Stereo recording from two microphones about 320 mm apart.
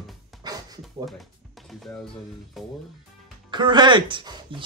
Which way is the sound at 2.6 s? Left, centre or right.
Centre.